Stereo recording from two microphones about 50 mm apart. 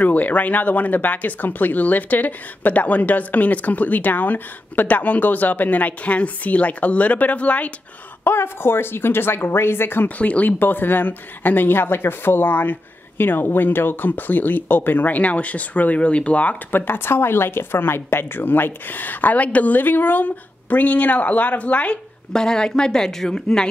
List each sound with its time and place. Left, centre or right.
0.0 s speech: left
8.2 s a woman's voice: left
10.1 s speech: left
10.6 s a woman's voice: left
16.8 s speech: left
22.3 s speech: centre